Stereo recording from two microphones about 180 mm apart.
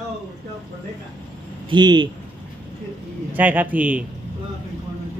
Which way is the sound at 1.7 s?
25° right (ahead or behind).